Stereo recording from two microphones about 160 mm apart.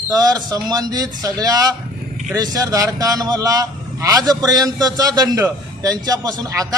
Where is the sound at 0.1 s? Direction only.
25° right (ahead or behind).